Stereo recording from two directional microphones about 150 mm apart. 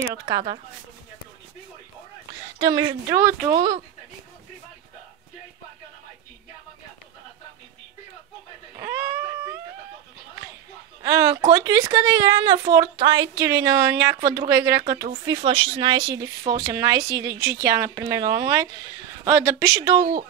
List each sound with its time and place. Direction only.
0.0 s a woman's voice: 20° right (ahead or behind)
2.6 s a woman's voice: 25° right (ahead or behind)
3.5 s speech: 35° right (ahead or behind)
8.7 s a sound: 15° right (ahead or behind)
11.0 s a woman's voice: 25° right (ahead or behind)